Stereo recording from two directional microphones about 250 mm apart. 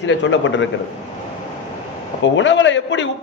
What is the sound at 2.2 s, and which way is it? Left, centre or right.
Speech, left.